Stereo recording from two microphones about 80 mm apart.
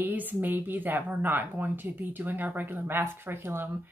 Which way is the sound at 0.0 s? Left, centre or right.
Right.